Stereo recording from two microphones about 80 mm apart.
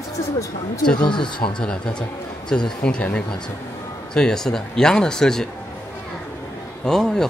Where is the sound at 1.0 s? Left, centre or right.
Left.